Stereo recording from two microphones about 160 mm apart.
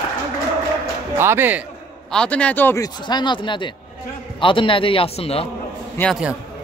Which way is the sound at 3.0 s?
30° left (ahead or behind).